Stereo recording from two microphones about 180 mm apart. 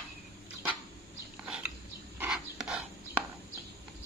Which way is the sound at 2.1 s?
5° right (ahead or behind).